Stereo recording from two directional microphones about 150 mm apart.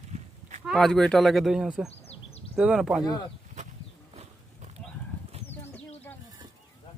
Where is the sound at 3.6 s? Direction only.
50° right (ahead or behind).